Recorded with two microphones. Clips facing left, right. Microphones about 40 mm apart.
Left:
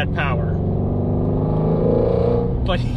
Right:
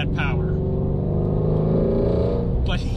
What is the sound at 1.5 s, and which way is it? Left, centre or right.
Vehicle, left.